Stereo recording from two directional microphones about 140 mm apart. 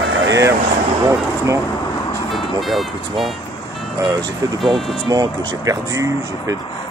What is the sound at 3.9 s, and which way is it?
Speech, 25° right (ahead or behind).